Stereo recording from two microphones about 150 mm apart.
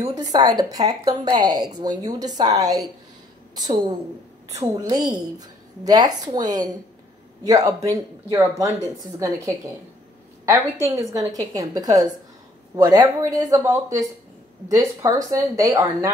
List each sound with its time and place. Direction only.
0.1 s a woman's voice: 25° right (ahead or behind)